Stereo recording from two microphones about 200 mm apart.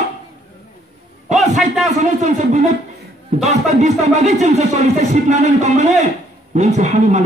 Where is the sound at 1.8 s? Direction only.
35° right (ahead or behind).